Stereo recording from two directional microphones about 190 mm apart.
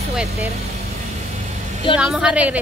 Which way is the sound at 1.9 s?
5° right (ahead or behind).